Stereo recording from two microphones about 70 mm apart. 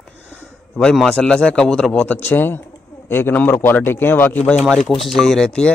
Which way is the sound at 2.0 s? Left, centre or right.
Left.